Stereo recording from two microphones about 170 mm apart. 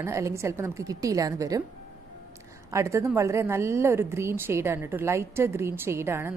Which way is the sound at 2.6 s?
15° right (ahead or behind).